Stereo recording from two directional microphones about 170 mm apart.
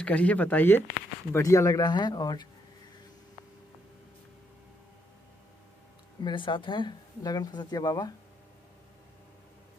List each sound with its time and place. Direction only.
0.0 s speech: 10° left (ahead or behind); by 2.4 s 25° left (ahead or behind)
6.2 s speech: 30° left (ahead or behind)